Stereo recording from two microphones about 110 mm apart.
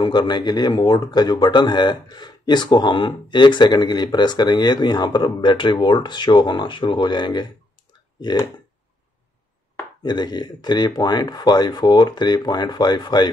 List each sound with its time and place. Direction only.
0.0 s speech: 40° left (ahead or behind)
10.0 s speech: 40° left (ahead or behind)